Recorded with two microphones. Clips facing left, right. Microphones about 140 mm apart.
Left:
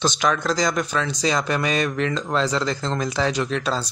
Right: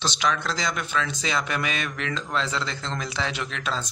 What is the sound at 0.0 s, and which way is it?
Speech, 45° left (ahead or behind).